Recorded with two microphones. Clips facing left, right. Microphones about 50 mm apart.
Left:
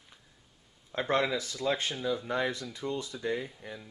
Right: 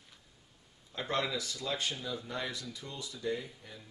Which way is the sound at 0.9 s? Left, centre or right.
Left.